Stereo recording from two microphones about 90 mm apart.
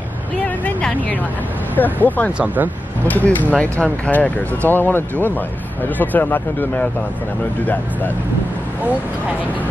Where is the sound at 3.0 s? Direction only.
20° left (ahead or behind).